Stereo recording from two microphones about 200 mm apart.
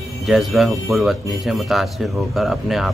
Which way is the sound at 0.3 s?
Centre (ahead or behind).